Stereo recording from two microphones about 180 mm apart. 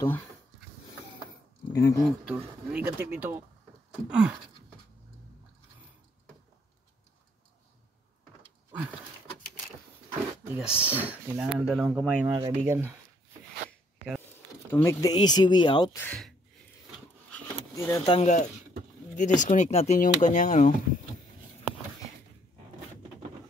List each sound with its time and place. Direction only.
0.0 s speech: 10° left (ahead or behind)
1.7 s speech: 20° left (ahead or behind)
2.0 s speech: 5° right (ahead or behind)
8.7 s a sound: 10° right (ahead or behind)
10.5 s speech: 5° right (ahead or behind)
12.4 s speech: 20° right (ahead or behind)
13.7 s a sound: centre (ahead or behind)
14.7 s speech: 15° left (ahead or behind)
16.0 s speech: 5° left (ahead or behind)
17.7 s speech: 20° left (ahead or behind)
18.0 s speech: 40° left (ahead or behind)